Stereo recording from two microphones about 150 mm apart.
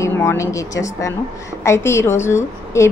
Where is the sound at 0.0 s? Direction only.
20° left (ahead or behind).